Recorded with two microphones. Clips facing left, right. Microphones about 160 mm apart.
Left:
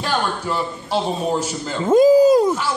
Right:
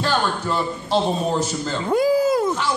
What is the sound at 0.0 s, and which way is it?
Speech, 10° left (ahead or behind).